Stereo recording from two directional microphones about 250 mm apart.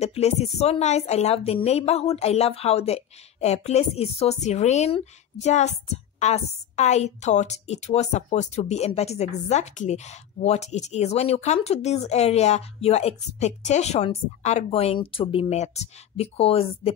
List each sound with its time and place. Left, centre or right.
0.0 s speech: left